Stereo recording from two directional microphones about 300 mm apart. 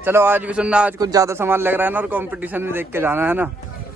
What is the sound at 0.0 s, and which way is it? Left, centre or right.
A man's voice, centre.